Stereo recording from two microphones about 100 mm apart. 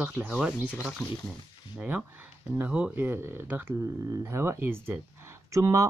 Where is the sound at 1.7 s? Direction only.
10° right (ahead or behind).